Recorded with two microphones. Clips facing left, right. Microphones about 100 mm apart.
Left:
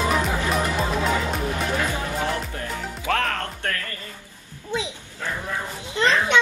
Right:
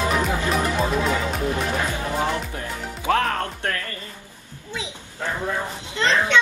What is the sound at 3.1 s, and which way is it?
Music, 20° right (ahead or behind).